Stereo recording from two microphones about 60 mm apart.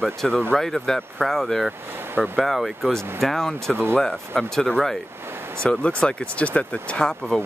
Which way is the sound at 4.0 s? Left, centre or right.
Centre.